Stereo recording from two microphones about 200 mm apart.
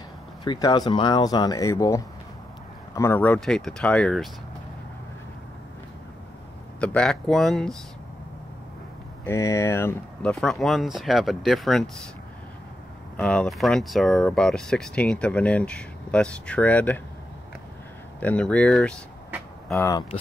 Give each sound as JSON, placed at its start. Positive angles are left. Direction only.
{"t": 0.4, "sound": "speech", "side_deg": 20}
{"t": 6.8, "sound": "speech", "side_deg": 5}
{"t": 9.2, "sound": "speech", "side_deg": 15}
{"t": 13.2, "sound": "speech", "side_deg": 5}
{"t": 18.2, "sound": "speech", "side_deg": 5}